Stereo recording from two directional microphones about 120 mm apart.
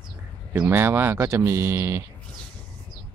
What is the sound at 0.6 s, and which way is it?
Speech, 20° right (ahead or behind).